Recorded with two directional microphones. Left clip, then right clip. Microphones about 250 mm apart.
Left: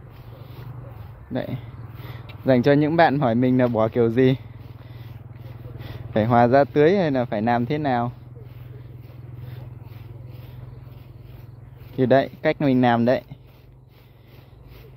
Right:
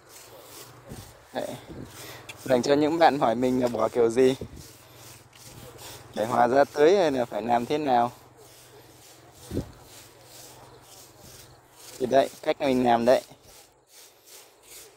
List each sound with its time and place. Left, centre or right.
2.4 s speech: centre
6.1 s speech: centre
12.1 s speech: centre